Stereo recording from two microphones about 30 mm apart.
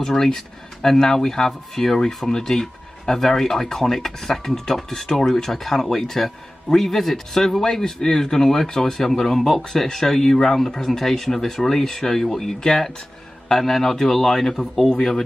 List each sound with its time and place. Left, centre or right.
0.0 s speech: centre
8.9 s speech: centre